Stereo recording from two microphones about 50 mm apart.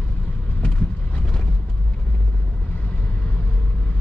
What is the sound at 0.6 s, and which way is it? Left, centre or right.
Vehicle, left.